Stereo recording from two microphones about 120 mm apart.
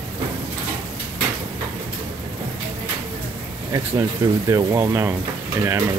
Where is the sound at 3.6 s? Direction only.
30° right (ahead or behind).